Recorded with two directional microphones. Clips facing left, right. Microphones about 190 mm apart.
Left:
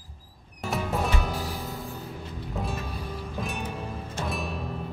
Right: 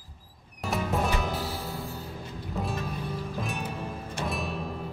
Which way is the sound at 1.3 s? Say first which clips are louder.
Even; 15° left (ahead or behind).